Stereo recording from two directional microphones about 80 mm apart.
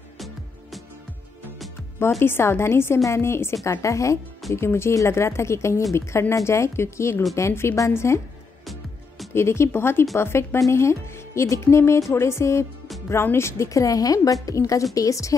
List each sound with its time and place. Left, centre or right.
0.2 s music: centre
2.0 s speech: left
9.3 s a woman's voice: left